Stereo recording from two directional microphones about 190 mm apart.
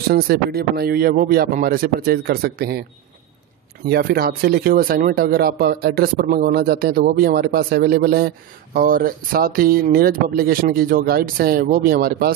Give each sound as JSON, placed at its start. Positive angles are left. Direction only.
{"t": 0.1, "sound": "speech", "side_deg": -55}
{"t": 3.9, "sound": "speech", "side_deg": -55}